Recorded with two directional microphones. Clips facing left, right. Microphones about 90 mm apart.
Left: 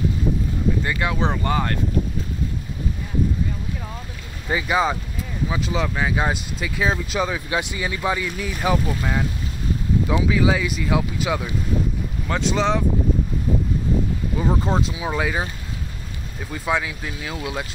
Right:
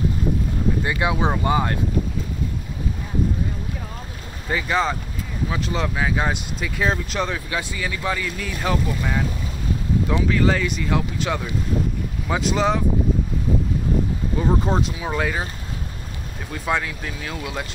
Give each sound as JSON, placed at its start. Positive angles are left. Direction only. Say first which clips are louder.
{"t": 0.8, "sound": "speech", "louder": "right 1 dB", "side_deg": -15}
{"t": 4.5, "sound": "speech", "louder": "left 1 dB", "side_deg": 10}
{"t": 7.4, "sound": "speech", "louder": "left 2 dB", "side_deg": 20}
{"t": 12.3, "sound": "speech", "louder": "even", "side_deg": -5}
{"t": 14.4, "sound": "speech", "louder": "right 1 dB", "side_deg": 0}
{"t": 16.6, "sound": "speech", "louder": "even", "side_deg": 5}